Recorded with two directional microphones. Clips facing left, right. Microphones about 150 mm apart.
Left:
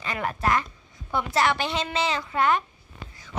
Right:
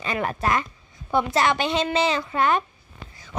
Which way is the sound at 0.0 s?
20° right (ahead or behind).